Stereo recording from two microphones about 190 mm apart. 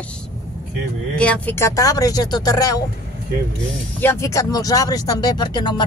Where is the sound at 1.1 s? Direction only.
5° left (ahead or behind).